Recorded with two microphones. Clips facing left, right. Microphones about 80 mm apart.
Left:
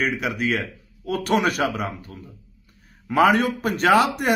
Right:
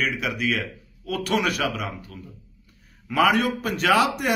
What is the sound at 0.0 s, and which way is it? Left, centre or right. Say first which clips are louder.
Speech: left 2 dB; left.